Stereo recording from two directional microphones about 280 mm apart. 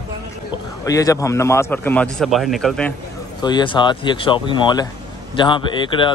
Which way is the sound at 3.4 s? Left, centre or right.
Centre.